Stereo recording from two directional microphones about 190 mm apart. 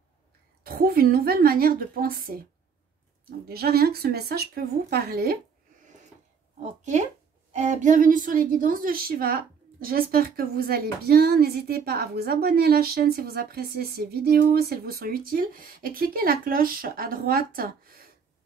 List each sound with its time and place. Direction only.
0.7 s a woman's voice: 50° right (ahead or behind)
6.8 s a woman's voice: 40° right (ahead or behind)